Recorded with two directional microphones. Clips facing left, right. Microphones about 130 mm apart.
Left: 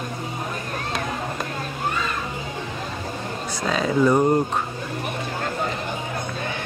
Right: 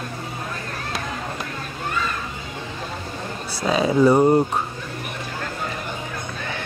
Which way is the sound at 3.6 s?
10° right (ahead or behind).